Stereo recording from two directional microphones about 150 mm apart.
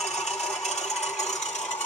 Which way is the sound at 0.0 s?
45° left (ahead or behind).